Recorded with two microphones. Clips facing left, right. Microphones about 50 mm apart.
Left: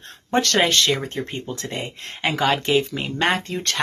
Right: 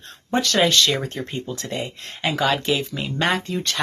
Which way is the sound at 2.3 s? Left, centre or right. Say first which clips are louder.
Left 1 dB; left.